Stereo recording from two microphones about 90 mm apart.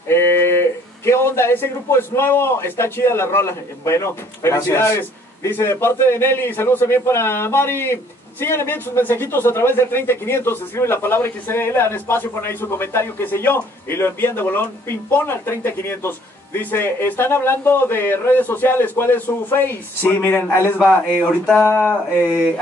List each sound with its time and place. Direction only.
0.1 s speech: 30° left (ahead or behind)